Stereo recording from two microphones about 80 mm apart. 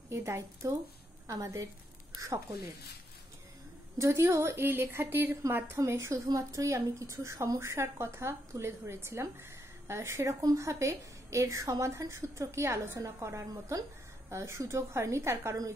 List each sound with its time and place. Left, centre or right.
0.1 s a woman's voice: right
4.0 s a woman's voice: right
13.5 s a woman's voice: right
14.3 s a woman's voice: right